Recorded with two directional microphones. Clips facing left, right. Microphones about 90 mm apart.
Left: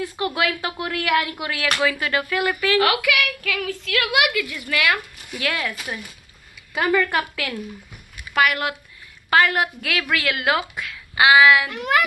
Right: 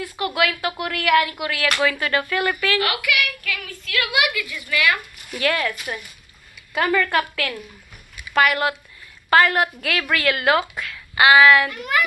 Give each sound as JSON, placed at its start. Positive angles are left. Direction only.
{"t": 0.0, "sound": "speech", "side_deg": 25}
{"t": 1.8, "sound": "speech", "side_deg": 10}
{"t": 3.5, "sound": "a woman's voice", "side_deg": 90}
{"t": 5.3, "sound": "speech", "side_deg": 10}
{"t": 8.3, "sound": "a woman's voice", "side_deg": 5}
{"t": 11.7, "sound": "a woman's voice", "side_deg": 85}